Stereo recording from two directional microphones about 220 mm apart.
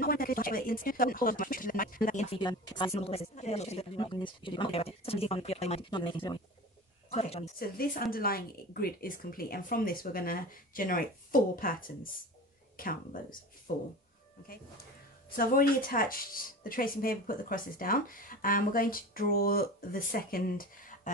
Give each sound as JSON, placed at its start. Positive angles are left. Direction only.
{"t": 0.0, "sound": "speech", "side_deg": 40}
{"t": 2.3, "sound": "speech", "side_deg": 20}
{"t": 7.5, "sound": "speech", "side_deg": 40}